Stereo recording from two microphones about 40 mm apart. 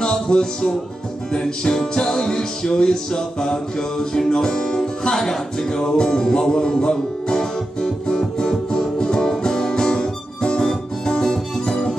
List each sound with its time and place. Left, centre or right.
0.0 s music: centre